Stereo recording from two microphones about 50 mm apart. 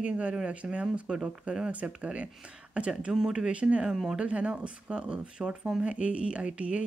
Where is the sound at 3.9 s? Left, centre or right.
Centre.